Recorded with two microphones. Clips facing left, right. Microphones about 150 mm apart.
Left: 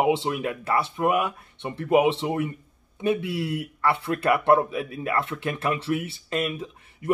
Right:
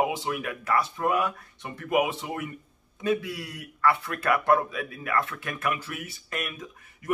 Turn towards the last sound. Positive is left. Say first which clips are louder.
# left 5 dB
turn(degrees=25)  # may be behind; listen again after turning